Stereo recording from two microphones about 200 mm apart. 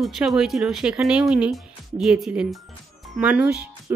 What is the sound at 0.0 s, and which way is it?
A woman's voice, centre (ahead or behind).